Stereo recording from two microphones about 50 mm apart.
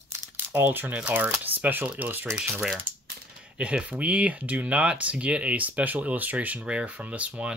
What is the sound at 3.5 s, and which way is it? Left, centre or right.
Speech, right.